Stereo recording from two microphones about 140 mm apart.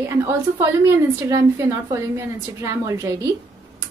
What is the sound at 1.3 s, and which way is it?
A woman's voice, 25° right (ahead or behind).